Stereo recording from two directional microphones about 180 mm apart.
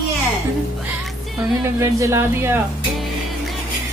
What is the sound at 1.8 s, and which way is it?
Speech, 15° right (ahead or behind).